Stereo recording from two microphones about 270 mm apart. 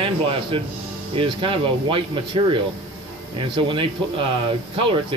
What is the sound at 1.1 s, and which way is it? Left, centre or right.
Speech, centre.